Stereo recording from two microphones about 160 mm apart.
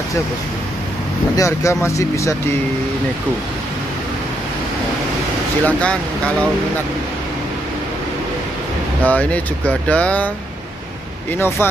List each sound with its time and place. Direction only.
1.3 s speech: 20° left (ahead or behind)
5.7 s speech: 10° left (ahead or behind)
9.0 s speech: 10° left (ahead or behind)
11.3 s speech: 15° left (ahead or behind)